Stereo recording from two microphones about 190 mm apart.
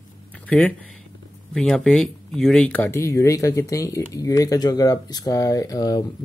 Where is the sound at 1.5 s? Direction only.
5° left (ahead or behind).